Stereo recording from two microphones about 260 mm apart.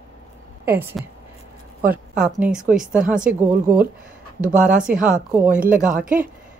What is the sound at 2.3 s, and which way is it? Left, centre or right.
Speech, centre.